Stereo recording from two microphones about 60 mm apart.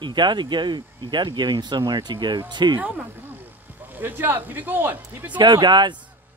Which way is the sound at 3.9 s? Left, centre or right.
Right.